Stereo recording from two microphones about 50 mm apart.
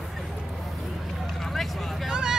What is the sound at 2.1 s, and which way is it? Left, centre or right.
Vehicle, centre.